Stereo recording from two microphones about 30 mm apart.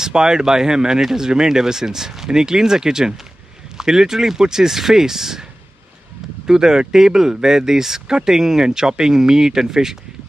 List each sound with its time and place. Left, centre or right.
0.0 s speech: right